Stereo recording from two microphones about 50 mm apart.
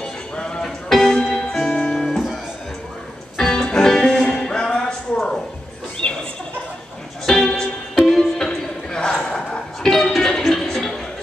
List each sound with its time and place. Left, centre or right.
0.0 s music: centre
3.3 s music: centre
6.0 s a sound: left
7.2 s music: centre
9.8 s music: centre